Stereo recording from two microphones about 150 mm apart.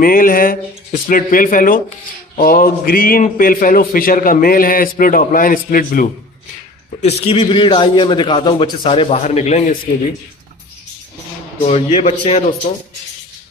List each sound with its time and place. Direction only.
0.0 s a man's voice: 70° left (ahead or behind)
7.0 s a man's voice: 40° left (ahead or behind)
11.6 s a man's voice: 45° left (ahead or behind)